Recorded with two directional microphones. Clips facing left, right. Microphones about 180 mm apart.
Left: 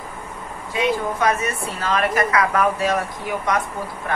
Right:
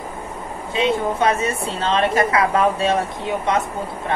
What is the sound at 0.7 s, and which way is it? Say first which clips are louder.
A woman's voice: right 2 dB; 25° right (ahead or behind).